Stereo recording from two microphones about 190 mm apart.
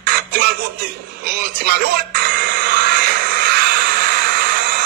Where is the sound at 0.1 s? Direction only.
50° right (ahead or behind).